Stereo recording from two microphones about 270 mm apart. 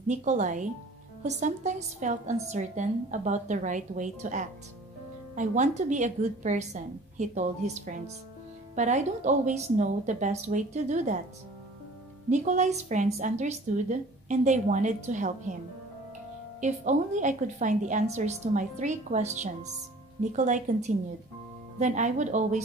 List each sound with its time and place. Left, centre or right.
0.1 s a woman's voice: right
12.3 s a woman's voice: right
16.6 s a woman's voice: right
21.7 s a woman's voice: right